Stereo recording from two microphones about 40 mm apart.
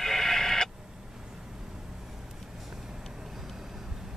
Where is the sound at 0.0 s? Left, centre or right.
Centre.